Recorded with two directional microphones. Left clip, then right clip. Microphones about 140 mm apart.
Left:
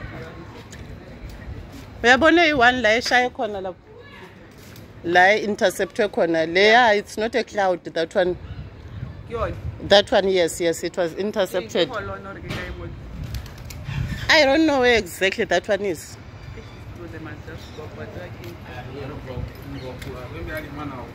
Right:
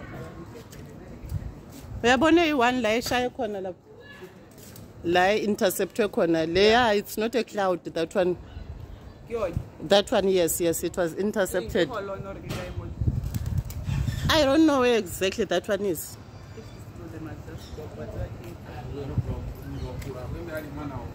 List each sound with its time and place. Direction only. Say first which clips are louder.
2.0 s speech: left 5 dB; 25° right (ahead or behind)
5.0 s speech: left 6 dB; 35° right (ahead or behind)
14.2 s speech: left 5 dB; 30° right (ahead or behind)